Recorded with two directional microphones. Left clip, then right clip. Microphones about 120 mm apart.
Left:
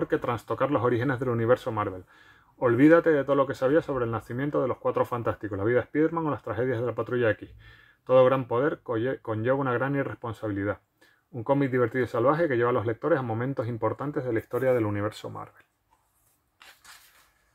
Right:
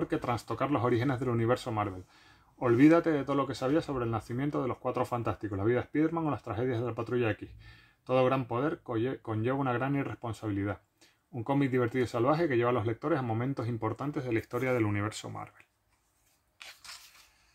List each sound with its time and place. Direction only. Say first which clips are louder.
0.0 s speech: left 5 dB; 15° right (ahead or behind)
8.3 s speech: left 6 dB; 20° right (ahead or behind)
11.8 s speech: left 5 dB; 25° right (ahead or behind)
14.0 s speech: left 5 dB; 5° right (ahead or behind)
14.5 s speech: left 7 dB; 25° right (ahead or behind)